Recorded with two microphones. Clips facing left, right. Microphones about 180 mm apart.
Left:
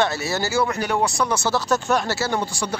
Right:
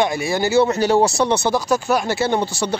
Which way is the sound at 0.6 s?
30° right (ahead or behind).